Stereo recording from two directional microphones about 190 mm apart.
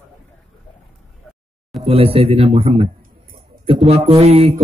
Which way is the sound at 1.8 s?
30° right (ahead or behind).